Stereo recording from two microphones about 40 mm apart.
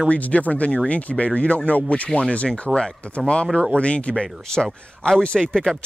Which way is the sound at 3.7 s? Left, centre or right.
Left.